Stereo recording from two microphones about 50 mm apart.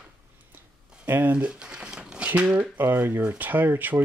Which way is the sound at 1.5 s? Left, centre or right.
Centre.